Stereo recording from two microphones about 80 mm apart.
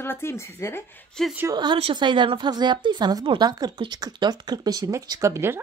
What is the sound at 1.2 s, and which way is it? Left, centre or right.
Speech, centre.